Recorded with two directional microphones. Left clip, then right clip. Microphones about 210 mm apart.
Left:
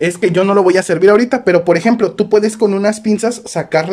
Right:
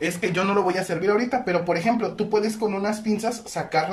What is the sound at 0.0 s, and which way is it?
Speech, 35° left (ahead or behind).